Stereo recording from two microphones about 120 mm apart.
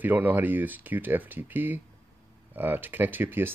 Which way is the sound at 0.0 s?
15° right (ahead or behind).